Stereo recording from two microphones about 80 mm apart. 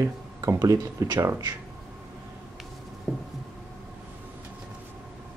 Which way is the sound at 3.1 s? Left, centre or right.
Centre.